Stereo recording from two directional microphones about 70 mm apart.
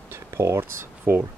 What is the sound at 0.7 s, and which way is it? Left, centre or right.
Speech, right.